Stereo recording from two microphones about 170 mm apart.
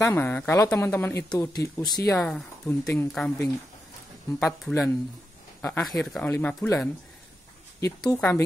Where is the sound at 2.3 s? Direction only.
5° left (ahead or behind).